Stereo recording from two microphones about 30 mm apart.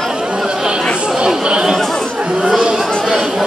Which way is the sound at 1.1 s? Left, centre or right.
Right.